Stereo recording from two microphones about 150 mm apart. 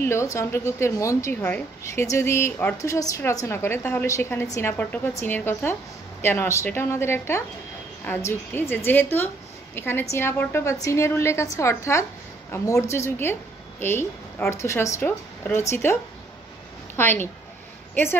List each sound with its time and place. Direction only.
0.0 s a woman's voice: 20° left (ahead or behind)